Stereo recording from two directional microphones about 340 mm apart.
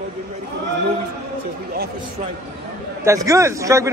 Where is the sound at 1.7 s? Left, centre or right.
Right.